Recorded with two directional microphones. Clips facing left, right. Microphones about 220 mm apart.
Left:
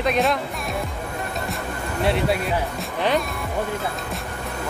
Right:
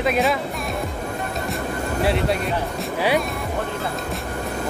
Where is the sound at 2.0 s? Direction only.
Centre (ahead or behind).